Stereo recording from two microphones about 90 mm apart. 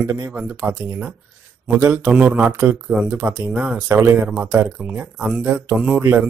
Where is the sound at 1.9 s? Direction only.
20° right (ahead or behind).